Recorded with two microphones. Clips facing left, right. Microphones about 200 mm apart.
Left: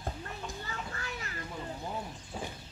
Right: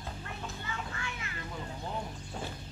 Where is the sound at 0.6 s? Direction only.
40° left (ahead or behind).